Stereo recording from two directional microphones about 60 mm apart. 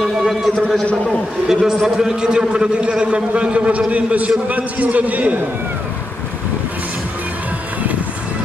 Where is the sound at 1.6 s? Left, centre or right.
Centre; by 5.4 s right.